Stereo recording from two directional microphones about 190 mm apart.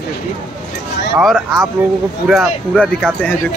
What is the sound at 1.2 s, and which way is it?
Speech, centre (ahead or behind).